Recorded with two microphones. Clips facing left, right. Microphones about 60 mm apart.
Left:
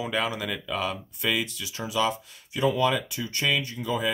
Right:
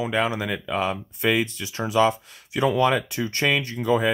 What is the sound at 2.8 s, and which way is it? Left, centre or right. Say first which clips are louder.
Speech: right 4 dB; right.